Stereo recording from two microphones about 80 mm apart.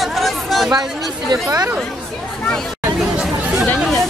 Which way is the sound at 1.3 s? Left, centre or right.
Right.